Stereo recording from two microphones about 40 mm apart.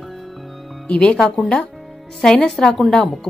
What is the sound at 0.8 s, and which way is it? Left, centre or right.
Speech, left.